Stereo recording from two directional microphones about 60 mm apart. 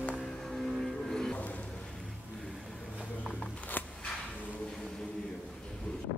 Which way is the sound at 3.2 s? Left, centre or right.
Centre.